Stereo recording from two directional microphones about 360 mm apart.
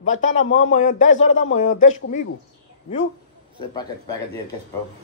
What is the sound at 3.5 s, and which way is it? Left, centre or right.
Speech, centre.